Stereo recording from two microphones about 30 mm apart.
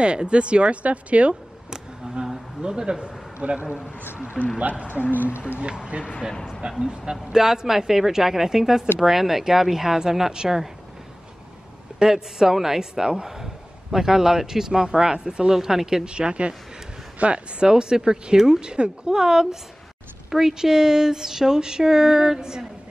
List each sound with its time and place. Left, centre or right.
0.0 s speech: right
2.6 s speech: right
3.4 s a man's voice: right
3.7 s speech: right
6.8 s speech: right
12.0 s speech: centre
15.5 s speech: centre
16.1 s speech: right
17.6 s speech: right